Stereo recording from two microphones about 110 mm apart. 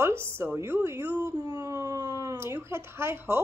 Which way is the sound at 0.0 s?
25° right (ahead or behind).